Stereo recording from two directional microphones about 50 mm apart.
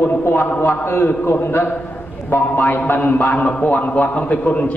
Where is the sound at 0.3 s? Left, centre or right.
Left.